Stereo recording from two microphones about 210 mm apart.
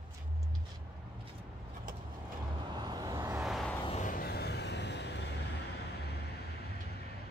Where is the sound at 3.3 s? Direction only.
Centre (ahead or behind).